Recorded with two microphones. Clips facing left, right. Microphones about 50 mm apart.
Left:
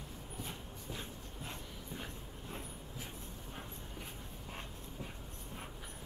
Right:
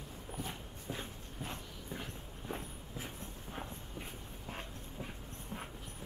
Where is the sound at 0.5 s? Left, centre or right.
Centre.